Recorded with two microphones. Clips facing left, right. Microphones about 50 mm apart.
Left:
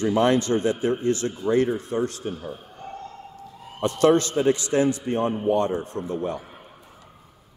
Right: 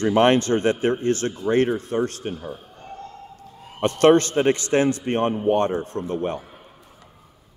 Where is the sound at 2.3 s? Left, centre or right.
Centre.